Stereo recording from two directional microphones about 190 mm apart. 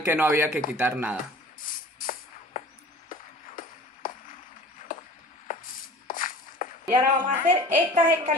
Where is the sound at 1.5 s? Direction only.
45° left (ahead or behind).